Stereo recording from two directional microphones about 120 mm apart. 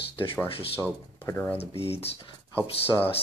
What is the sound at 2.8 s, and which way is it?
Speech, 20° left (ahead or behind).